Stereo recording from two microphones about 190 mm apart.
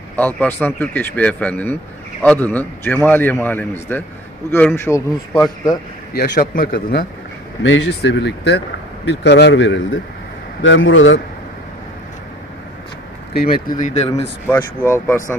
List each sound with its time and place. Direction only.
0.1 s a man's voice: 10° left (ahead or behind)
6.1 s a man's voice: 50° left (ahead or behind)
7.6 s a man's voice: 75° left (ahead or behind)
13.3 s speech: 55° left (ahead or behind)
13.7 s speech: 35° left (ahead or behind)
14.5 s a man's voice: 10° left (ahead or behind)